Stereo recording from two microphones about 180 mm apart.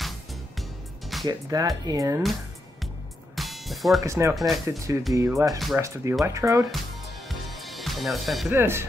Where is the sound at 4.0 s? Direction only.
15° right (ahead or behind).